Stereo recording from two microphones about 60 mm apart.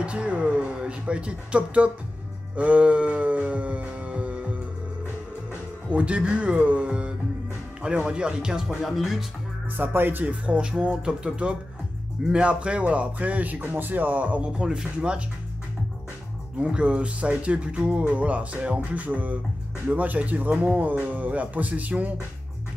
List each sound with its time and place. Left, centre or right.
0.0 s music: right
2.5 s howl: right
5.9 s speech: right; by 9.2 s centre
9.8 s speech: right
10.4 s speech: centre
14.4 s speech: centre
16.5 s speech: centre